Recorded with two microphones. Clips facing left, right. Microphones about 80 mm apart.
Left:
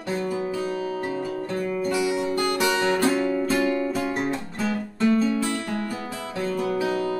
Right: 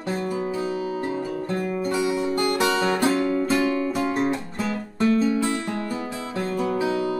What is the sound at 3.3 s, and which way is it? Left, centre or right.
Music, left.